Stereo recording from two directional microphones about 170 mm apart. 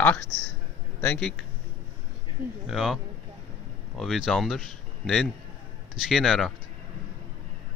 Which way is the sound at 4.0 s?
Centre (ahead or behind).